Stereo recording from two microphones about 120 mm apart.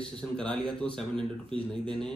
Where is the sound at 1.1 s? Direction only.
45° right (ahead or behind).